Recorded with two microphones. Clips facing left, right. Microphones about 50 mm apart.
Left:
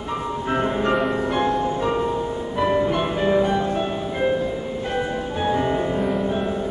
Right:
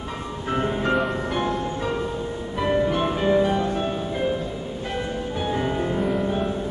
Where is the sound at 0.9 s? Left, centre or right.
Centre.